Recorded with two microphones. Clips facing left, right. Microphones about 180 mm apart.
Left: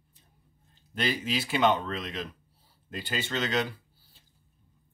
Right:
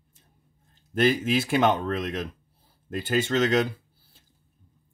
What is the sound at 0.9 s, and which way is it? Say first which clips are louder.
Speech: right 8 dB; 50° right (ahead or behind).